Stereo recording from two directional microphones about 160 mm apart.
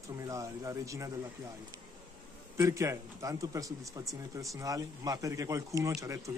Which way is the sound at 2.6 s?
20° right (ahead or behind).